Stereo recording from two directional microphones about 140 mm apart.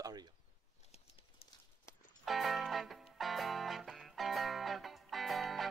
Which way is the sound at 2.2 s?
Centre (ahead or behind).